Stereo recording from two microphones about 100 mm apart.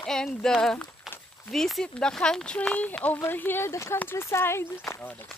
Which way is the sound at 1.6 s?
5° left (ahead or behind).